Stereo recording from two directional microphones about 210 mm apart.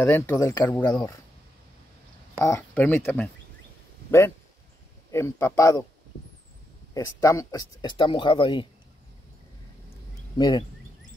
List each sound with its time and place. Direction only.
0.0 s speech: 10° left (ahead or behind)
2.4 s speech: 10° left (ahead or behind)
5.1 s speech: 10° left (ahead or behind)
6.9 s speech: 15° left (ahead or behind)
10.3 s speech: 20° left (ahead or behind)